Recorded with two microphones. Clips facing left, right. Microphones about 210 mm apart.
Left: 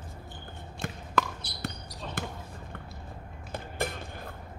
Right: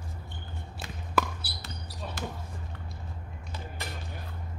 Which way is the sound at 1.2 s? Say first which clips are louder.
Even; 5° right (ahead or behind).